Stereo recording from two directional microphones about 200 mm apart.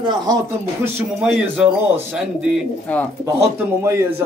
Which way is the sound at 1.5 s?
5° right (ahead or behind).